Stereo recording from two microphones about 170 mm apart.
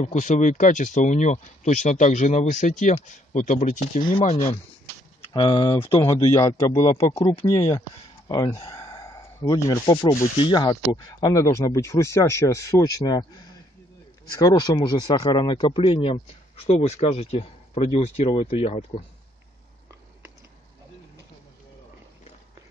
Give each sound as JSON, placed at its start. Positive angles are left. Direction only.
{"t": 0.0, "sound": "speech", "side_deg": 45}
{"t": 5.3, "sound": "speech", "side_deg": 25}
{"t": 14.4, "sound": "speech", "side_deg": 25}